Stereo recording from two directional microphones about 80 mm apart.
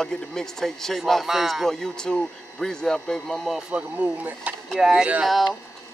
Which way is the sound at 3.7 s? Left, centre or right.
Centre.